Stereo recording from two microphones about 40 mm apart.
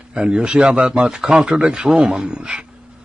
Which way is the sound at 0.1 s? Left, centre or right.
Right.